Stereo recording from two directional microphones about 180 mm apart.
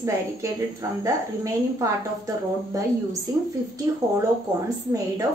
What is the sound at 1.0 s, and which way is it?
A woman's voice, 20° right (ahead or behind).